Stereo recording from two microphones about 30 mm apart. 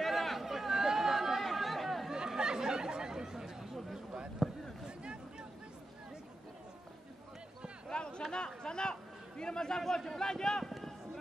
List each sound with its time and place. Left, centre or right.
0.0 s chatter: centre
0.5 s chatter: centre
2.0 s chatter: right
4.4 s a sound: centre
7.9 s a sound: left
9.4 s a man's voice: left
10.7 s run: centre